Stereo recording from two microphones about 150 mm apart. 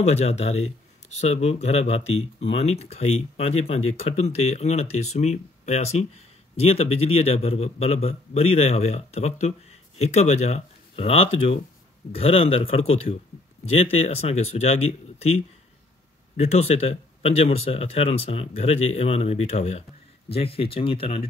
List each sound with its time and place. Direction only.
0.0 s speech: 45° left (ahead or behind)